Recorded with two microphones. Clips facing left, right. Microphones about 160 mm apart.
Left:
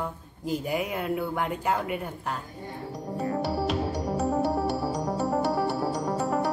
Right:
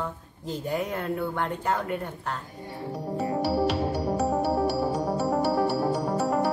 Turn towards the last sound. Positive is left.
turn(degrees=-5)  # may be behind; listen again after turning